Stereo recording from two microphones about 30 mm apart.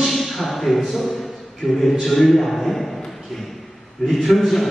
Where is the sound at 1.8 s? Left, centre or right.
Centre.